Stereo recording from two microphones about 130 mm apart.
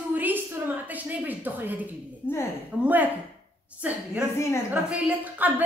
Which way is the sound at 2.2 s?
20° left (ahead or behind).